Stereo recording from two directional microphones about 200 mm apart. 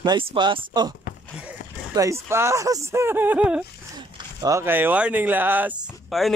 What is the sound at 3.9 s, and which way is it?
Speech, 20° right (ahead or behind).